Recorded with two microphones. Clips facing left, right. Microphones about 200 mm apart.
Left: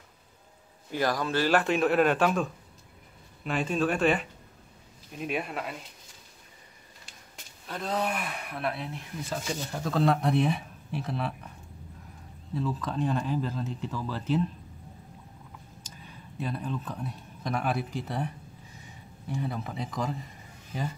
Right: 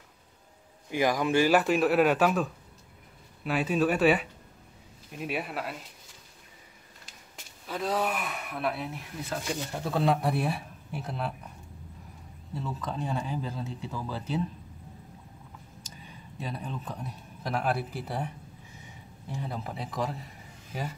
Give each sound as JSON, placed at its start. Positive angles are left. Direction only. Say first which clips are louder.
{"t": 0.9, "sound": "speech", "louder": "right 3 dB", "side_deg": -15}
{"t": 7.6, "sound": "speech", "louder": "right 1 dB", "side_deg": -5}
{"t": 12.5, "sound": "speech", "louder": "left 4 dB", "side_deg": 0}
{"t": 16.5, "sound": "speech", "louder": "left 3 dB", "side_deg": -5}
{"t": 19.4, "sound": "speech", "louder": "left 1 dB", "side_deg": -5}